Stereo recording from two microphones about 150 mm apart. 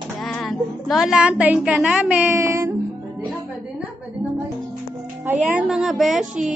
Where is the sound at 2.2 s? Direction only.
15° right (ahead or behind).